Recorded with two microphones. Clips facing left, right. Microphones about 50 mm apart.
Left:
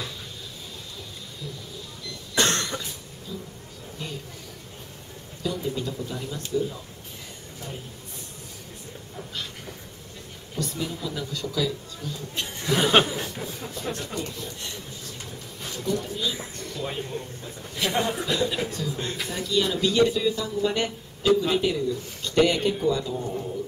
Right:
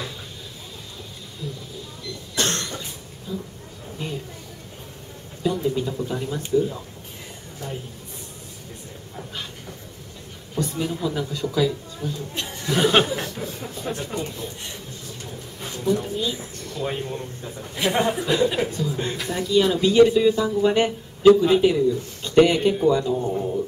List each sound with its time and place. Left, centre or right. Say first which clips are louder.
2.3 s cough: left 2 dB; left
5.4 s speech: right 6 dB; centre
9.1 s a man's voice: right 1 dB; centre
10.5 s speech: right 5 dB; centre
12.7 s speech: right 2 dB; centre
13.0 s chuckle: right 3 dB; right
13.9 s speech: right 3 dB; right
15.7 s a man's voice: right 5 dB; centre